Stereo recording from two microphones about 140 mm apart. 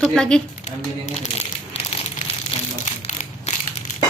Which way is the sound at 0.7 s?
55° left (ahead or behind).